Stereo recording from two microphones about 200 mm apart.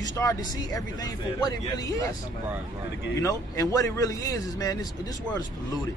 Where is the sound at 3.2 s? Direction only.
15° left (ahead or behind).